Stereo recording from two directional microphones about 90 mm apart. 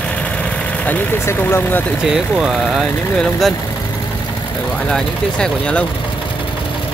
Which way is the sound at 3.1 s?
5° left (ahead or behind).